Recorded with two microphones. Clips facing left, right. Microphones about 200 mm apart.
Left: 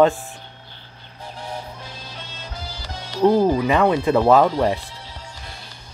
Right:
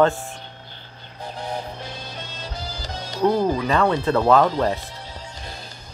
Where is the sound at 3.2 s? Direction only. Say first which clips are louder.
Left 4 dB; 15° left (ahead or behind).